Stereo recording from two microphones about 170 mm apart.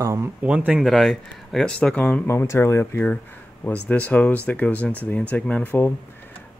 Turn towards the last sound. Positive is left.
turn(degrees=10)  # may be behind; listen again after turning